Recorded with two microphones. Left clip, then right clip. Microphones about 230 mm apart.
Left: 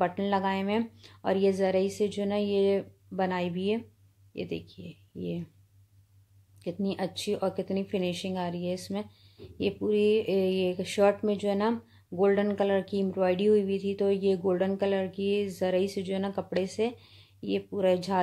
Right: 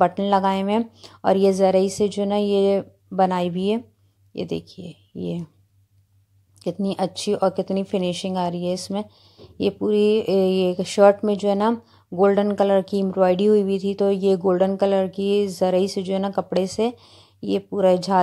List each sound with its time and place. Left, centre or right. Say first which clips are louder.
0.0 s speech: right 9 dB; right
6.6 s speech: right 8 dB; right